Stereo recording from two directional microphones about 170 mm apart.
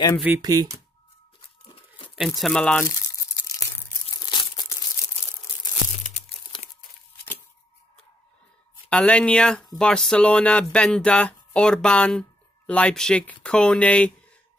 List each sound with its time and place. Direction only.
0.4 s speech: 25° right (ahead or behind)
2.1 s speech: centre (ahead or behind)
2.9 s crumpling: 15° left (ahead or behind)
6.5 s crumpling: 25° left (ahead or behind)
8.8 s speech: 5° left (ahead or behind)